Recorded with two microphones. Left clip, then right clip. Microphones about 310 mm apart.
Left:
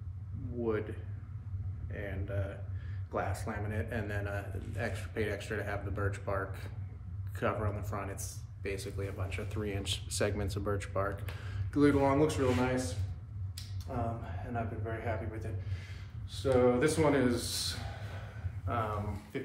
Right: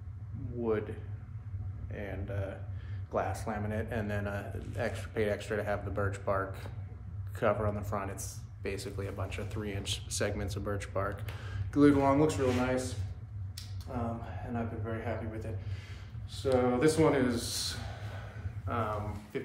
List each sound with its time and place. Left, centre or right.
1.9 s a man's voice: centre